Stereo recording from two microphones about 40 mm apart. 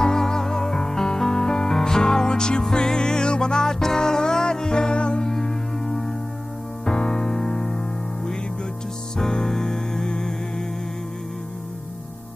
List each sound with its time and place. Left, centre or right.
0.0 s music: centre
5.2 s music: centre
9.2 s music: centre